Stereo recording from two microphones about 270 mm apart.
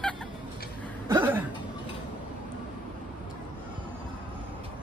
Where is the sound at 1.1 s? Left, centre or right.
Centre.